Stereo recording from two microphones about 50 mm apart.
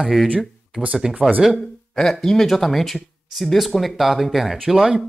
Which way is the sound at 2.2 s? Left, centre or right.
Centre.